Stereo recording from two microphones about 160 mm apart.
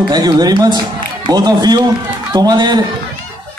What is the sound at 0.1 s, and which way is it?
A man's voice, 25° right (ahead or behind).